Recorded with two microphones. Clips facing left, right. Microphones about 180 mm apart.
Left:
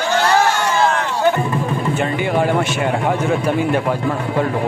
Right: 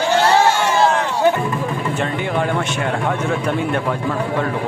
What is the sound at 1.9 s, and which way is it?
A man's voice, 5° left (ahead or behind).